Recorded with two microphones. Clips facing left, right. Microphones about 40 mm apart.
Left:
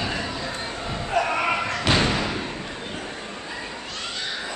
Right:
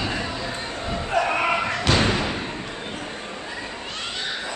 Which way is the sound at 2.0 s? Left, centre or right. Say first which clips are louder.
Right 1 dB; centre.